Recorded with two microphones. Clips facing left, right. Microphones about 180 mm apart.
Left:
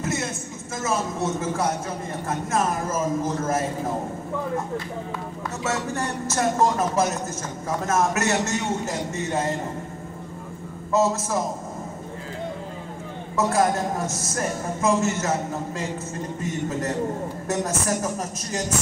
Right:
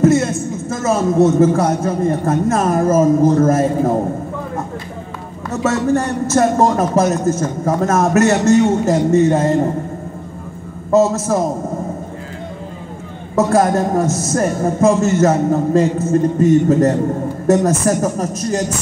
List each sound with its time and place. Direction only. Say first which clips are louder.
0.0 s speech: right 15 dB; 60° right (ahead or behind)
5.6 s speech: right 12 dB; 55° right (ahead or behind)
6.6 s speech: right 7 dB; 80° right
7.1 s speech: right 12 dB; 55° right (ahead or behind)
10.9 s speech: right 8 dB; 55° right (ahead or behind)
13.5 s speech: right 7 dB; 55° right (ahead or behind)